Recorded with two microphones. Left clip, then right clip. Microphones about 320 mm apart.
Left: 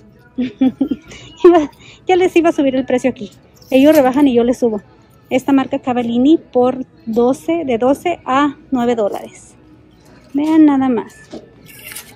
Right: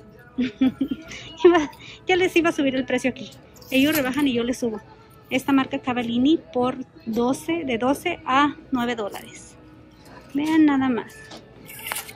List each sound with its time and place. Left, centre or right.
0.4 s a woman's voice: centre
10.4 s a woman's voice: centre